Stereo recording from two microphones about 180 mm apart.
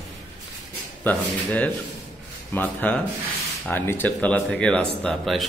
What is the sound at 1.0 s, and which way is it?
A man's voice, 10° left (ahead or behind).